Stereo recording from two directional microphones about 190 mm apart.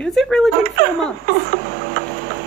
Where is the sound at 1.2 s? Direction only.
55° right (ahead or behind).